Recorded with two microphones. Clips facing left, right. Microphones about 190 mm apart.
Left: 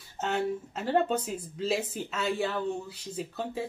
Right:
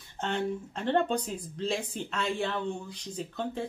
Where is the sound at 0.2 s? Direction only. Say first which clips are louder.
Left 1 dB; 5° left (ahead or behind).